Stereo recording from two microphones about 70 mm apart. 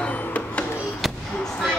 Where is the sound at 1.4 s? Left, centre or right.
Centre.